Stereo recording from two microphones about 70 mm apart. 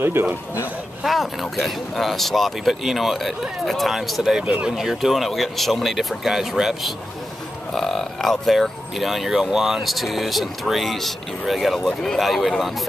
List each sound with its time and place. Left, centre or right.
0.0 s a man's voice: right
1.0 s speech: centre